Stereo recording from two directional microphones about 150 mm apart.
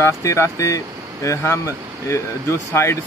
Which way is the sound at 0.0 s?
20° left (ahead or behind).